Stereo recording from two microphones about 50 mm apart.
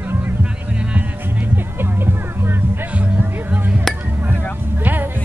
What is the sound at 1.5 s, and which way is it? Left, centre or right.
Music, right.